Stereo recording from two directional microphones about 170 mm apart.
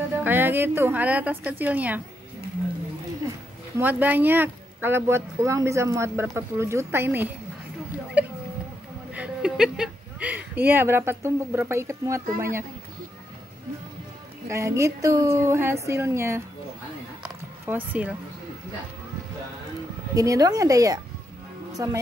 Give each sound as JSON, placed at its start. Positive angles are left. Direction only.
{"t": 0.2, "sound": "speech", "side_deg": -10}
{"t": 3.7, "sound": "speech", "side_deg": -10}
{"t": 7.9, "sound": "a sound", "side_deg": -5}
{"t": 9.1, "sound": "speech", "side_deg": -5}
{"t": 14.5, "sound": "speech", "side_deg": -15}
{"t": 17.2, "sound": "a sound", "side_deg": -10}
{"t": 20.2, "sound": "speech", "side_deg": -20}